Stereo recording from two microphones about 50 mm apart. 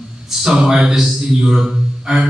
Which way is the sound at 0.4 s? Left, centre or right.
Centre.